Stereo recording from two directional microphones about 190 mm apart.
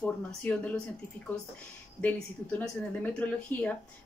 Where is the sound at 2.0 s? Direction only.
10° left (ahead or behind).